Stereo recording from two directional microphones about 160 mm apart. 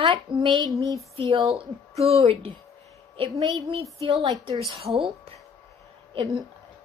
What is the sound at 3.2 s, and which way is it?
Speech, 35° right (ahead or behind).